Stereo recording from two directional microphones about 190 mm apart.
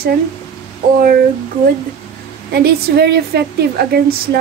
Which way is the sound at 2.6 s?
60° right (ahead or behind).